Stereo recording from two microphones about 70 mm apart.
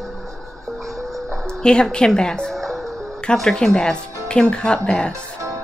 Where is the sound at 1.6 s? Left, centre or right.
Centre.